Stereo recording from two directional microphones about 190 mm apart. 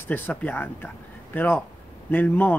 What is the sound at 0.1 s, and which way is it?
Speech, 10° left (ahead or behind).